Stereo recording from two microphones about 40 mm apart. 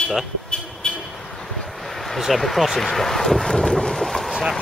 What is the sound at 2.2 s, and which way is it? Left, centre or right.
Speech, centre.